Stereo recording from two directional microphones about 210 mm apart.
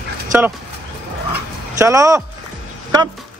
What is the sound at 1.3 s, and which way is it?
Dog, 15° right (ahead or behind).